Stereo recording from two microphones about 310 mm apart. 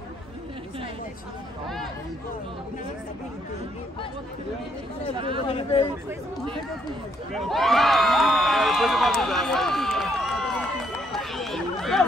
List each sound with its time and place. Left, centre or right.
5.1 s speech: centre
5.5 s speech: centre
7.3 s crowd: centre